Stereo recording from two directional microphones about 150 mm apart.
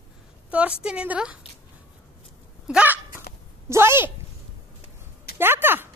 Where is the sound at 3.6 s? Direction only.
15° right (ahead or behind).